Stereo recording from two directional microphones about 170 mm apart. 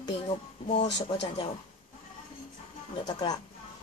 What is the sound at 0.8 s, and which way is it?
Speech, 90° left.